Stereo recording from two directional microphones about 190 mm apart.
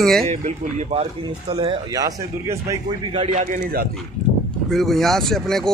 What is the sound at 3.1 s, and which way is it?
Speech, 35° right (ahead or behind).